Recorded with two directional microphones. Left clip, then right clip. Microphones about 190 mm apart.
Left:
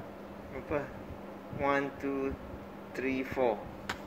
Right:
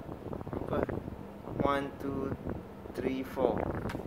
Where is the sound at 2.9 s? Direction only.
5° right (ahead or behind).